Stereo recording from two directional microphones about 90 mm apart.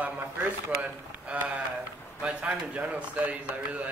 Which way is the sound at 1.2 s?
15° right (ahead or behind).